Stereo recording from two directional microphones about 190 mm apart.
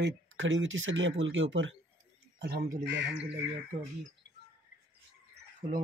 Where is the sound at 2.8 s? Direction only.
70° right (ahead or behind).